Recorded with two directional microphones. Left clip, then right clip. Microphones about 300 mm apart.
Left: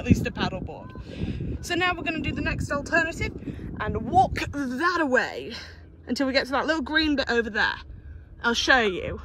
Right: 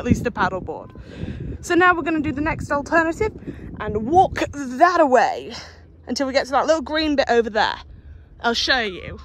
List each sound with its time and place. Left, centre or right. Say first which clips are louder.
0.0 s speech: right 6 dB; centre
8.8 s speech: left 2 dB; centre